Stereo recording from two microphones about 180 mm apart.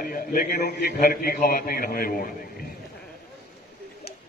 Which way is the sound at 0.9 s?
50° left (ahead or behind).